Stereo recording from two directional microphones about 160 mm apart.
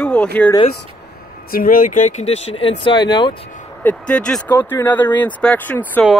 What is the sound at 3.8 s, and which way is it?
Speech, 5° left (ahead or behind).